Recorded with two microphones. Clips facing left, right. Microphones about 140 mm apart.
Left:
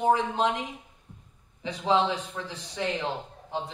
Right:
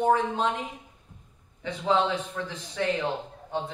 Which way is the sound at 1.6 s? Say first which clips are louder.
Even; 15° left (ahead or behind).